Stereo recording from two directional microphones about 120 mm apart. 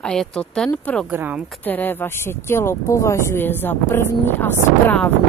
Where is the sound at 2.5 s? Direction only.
25° left (ahead or behind).